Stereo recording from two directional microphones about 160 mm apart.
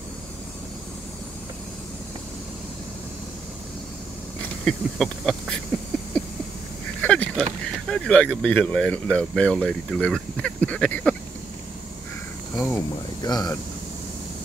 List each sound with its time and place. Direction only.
4.6 s speech: centre (ahead or behind)
7.0 s a sound: 10° left (ahead or behind)
7.9 s speech: 5° left (ahead or behind)
12.5 s speech: 10° left (ahead or behind)
13.2 s speech: 25° left (ahead or behind)